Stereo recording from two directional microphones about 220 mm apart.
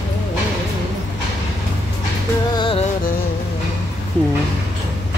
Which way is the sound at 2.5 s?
25° left (ahead or behind).